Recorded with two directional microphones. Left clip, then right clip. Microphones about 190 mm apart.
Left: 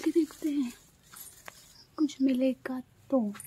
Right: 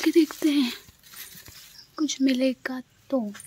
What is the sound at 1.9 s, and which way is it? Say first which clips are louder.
Speech: right 4 dB; 5° right (ahead or behind).